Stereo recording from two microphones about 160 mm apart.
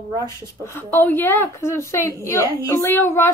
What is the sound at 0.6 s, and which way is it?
A woman's voice, 15° left (ahead or behind).